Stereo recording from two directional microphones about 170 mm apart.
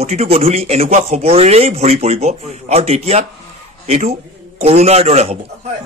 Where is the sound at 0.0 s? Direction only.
40° right (ahead or behind).